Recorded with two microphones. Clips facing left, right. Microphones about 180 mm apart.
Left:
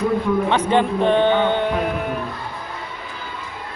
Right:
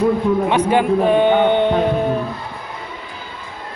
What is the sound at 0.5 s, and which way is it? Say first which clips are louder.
Speech: right 3 dB; 10° right (ahead or behind).